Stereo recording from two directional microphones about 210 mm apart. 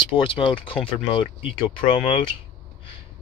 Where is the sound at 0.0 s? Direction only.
25° left (ahead or behind).